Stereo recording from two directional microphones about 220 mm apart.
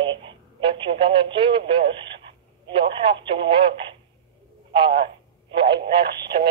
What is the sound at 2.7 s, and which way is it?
Speech, 25° right (ahead or behind).